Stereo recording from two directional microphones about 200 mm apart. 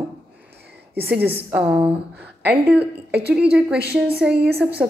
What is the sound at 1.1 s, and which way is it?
Speech, 10° right (ahead or behind).